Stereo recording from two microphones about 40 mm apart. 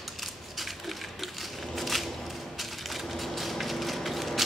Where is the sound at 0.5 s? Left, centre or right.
Centre.